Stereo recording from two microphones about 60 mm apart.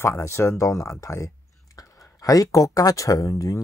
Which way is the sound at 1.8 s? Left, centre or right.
Left.